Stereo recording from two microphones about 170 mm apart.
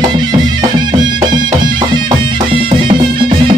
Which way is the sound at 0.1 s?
25° right (ahead or behind).